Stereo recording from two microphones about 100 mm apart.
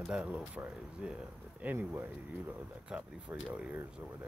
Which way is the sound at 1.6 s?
20° right (ahead or behind).